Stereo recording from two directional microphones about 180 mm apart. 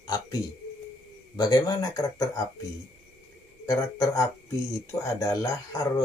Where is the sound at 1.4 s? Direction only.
20° left (ahead or behind).